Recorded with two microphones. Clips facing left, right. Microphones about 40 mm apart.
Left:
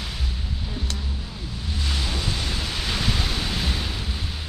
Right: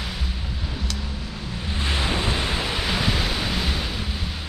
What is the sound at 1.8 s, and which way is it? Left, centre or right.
Pink noise, right.